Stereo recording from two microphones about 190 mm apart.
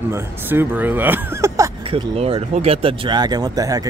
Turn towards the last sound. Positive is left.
turn(degrees=-20)  # may be behind; listen again after turning